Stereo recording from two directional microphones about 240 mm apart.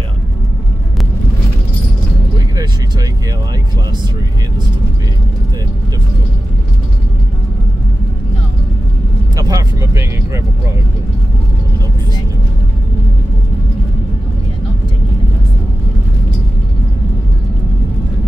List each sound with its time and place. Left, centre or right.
2.3 s vehicle: centre
9.4 s vehicle: centre